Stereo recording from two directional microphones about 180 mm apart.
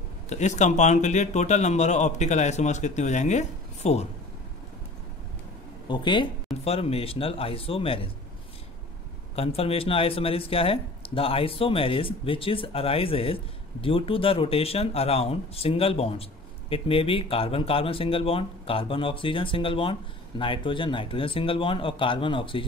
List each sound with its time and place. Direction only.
0.3 s speech: 40° left (ahead or behind)
5.9 s speech: 25° left (ahead or behind)
9.3 s speech: 35° left (ahead or behind)